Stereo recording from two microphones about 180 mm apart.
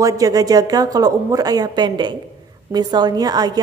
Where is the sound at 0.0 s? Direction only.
20° right (ahead or behind).